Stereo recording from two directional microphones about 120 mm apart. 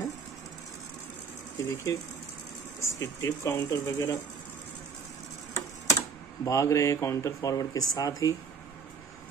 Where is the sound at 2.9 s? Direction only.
30° left (ahead or behind).